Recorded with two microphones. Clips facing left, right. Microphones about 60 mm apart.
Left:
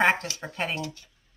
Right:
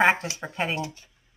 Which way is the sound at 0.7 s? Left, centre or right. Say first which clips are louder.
Right 2 dB; right.